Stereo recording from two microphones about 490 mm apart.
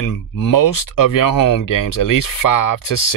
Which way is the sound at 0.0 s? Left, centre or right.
Left.